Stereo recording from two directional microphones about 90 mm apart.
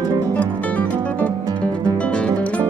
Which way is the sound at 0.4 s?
15° left (ahead or behind).